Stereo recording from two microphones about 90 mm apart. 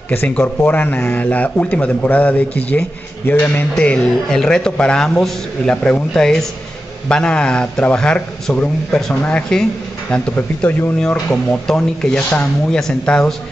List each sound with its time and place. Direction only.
0.4 s speech: 20° left (ahead or behind)